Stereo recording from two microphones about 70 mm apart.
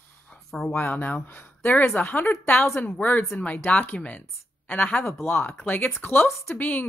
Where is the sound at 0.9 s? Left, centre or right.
Left.